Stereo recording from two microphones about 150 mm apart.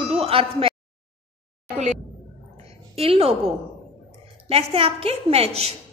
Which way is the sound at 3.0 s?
40° right (ahead or behind).